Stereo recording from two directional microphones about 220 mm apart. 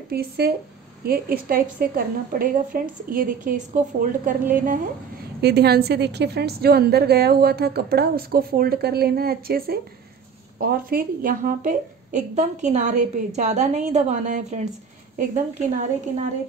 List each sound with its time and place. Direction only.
0.1 s a woman's voice: 45° right (ahead or behind)